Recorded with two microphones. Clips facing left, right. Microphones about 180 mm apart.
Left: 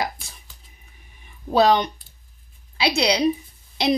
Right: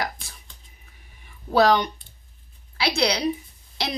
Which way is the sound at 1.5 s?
20° left (ahead or behind).